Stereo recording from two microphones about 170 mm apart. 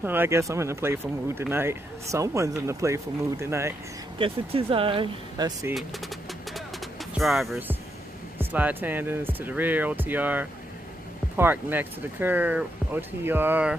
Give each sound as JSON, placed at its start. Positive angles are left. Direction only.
{"t": 0.0, "sound": "speech", "side_deg": -10}
{"t": 4.2, "sound": "speech", "side_deg": -35}
{"t": 7.2, "sound": "speech", "side_deg": 0}